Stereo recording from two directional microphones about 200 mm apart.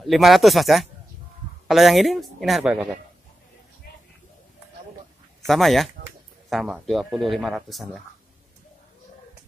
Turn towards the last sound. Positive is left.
turn(degrees=0)  # may be behind; listen again after turning